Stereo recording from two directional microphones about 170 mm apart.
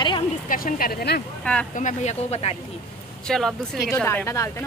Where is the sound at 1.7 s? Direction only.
45° left (ahead or behind).